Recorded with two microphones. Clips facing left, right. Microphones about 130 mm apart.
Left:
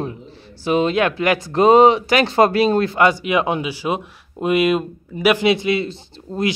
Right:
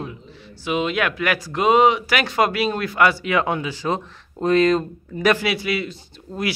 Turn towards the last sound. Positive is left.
turn(degrees=30)  # may be behind; listen again after turning